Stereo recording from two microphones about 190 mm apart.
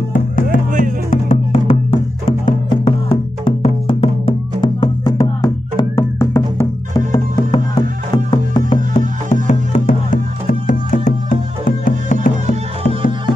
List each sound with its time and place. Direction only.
0.1 s music: 45° left (ahead or behind)
1.1 s music: 35° left (ahead or behind)